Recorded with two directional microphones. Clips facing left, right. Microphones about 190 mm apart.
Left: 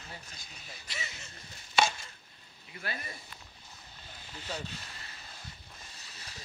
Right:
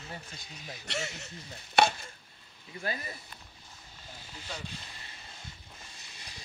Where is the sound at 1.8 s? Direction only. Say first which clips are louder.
Right 4 dB; 60° right (ahead or behind).